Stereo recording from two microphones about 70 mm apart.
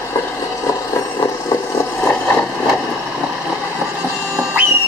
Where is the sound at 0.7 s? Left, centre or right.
Left.